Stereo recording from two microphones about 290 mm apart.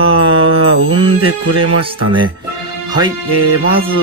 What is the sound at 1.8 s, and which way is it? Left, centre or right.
Speech, centre.